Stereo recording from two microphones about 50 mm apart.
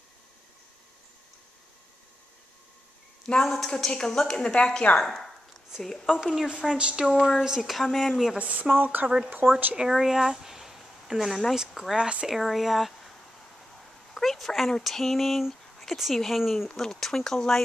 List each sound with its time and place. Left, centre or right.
3.3 s a woman's voice: centre
5.1 s a sound: centre
5.8 s speech: centre
6.2 s a woman's voice: centre
6.8 s speech: centre
7.2 s speech: left
7.4 s speech: centre
8.4 s speech: right
8.7 s speech: right
9.4 s a woman's voice: centre
9.8 s speech: centre
11.9 s speech: centre
12.3 s speech: centre
14.1 s a woman's voice: centre